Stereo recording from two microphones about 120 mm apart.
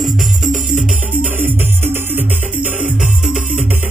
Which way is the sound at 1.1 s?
15° right (ahead or behind).